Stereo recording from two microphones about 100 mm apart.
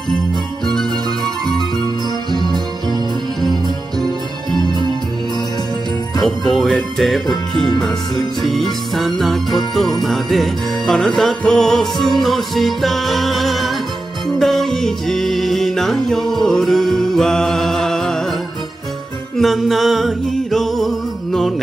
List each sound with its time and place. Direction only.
0.7 s music: 5° left (ahead or behind)
2.3 s music: 45° right (ahead or behind)
6.2 s jingle bell: centre (ahead or behind)
14.4 s music: 5° left (ahead or behind)
19.3 s music: centre (ahead or behind)